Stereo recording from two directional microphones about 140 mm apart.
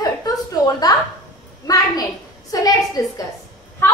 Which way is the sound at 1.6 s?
25° left (ahead or behind).